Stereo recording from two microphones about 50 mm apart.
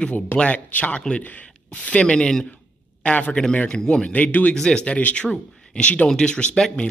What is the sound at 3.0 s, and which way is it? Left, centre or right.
Speech, left.